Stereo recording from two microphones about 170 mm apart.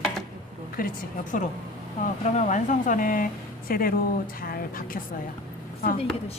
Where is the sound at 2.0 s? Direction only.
45° left (ahead or behind).